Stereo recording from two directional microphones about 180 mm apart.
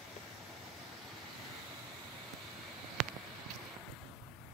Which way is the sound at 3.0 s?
Centre (ahead or behind).